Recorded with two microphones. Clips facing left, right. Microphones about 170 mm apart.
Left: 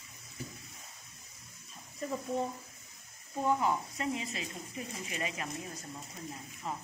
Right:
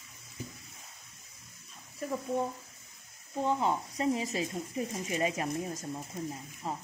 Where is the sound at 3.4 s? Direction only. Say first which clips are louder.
Even; 30° right (ahead or behind).